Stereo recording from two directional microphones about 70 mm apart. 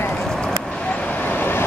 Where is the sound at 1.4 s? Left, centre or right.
Left.